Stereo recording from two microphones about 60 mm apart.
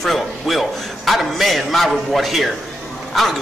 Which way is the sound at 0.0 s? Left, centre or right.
Centre.